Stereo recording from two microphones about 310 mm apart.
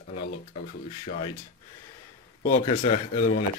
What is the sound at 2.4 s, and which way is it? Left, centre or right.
Speech, centre.